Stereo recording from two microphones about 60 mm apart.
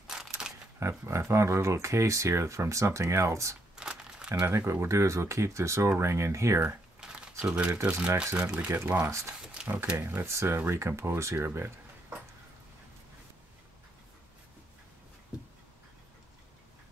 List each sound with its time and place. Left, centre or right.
0.0 s a sound: centre
0.7 s speech: right
3.7 s crumpling: centre
4.5 s speech: right
7.0 s a sound: centre; by 8.0 s right
8.5 s speech: right
9.9 s speech: right